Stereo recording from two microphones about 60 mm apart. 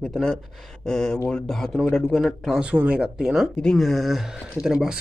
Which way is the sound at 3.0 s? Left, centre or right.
Centre.